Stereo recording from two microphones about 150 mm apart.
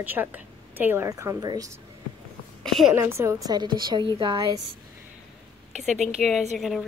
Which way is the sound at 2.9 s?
15° right (ahead or behind).